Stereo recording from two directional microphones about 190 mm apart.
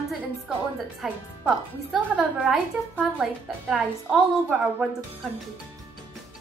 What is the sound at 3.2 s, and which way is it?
A woman's voice, 5° right (ahead or behind).